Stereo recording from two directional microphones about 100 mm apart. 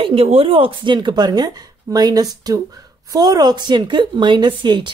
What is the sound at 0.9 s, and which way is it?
Speech, 45° right (ahead or behind).